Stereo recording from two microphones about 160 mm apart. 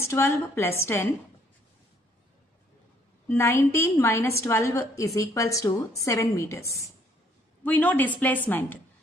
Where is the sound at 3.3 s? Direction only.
15° left (ahead or behind).